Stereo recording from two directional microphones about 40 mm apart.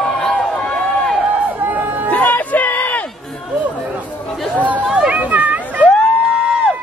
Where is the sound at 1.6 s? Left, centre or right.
Right.